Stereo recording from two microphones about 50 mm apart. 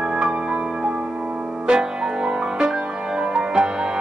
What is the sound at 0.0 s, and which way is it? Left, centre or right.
Music, centre.